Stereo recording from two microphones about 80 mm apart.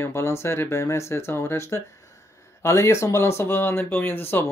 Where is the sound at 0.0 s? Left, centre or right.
Left.